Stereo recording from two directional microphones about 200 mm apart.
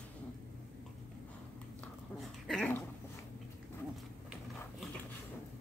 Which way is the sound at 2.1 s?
Centre (ahead or behind).